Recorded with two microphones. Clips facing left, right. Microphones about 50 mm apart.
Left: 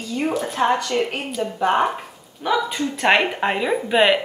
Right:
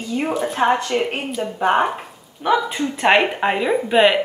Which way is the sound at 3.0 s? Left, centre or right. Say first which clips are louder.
Right 2 dB; centre.